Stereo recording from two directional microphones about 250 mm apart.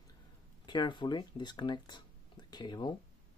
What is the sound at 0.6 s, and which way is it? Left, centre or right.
Speech, centre.